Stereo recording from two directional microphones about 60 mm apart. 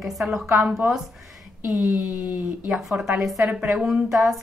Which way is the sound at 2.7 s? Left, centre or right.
Centre.